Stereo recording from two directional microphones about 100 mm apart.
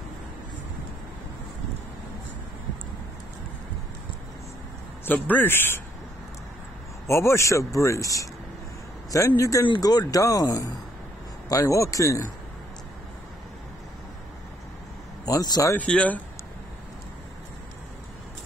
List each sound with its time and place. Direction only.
5.0 s a man's voice: 20° left (ahead or behind)
7.1 s a man's voice: 30° left (ahead or behind)
9.4 s a man's voice: 30° left (ahead or behind)
15.2 s a man's voice: 40° left (ahead or behind)
15.7 s speech: 15° left (ahead or behind)